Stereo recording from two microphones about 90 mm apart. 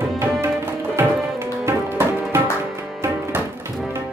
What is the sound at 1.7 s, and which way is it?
Music, 25° right (ahead or behind).